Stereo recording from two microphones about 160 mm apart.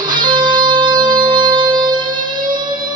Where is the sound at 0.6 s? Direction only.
30° right (ahead or behind).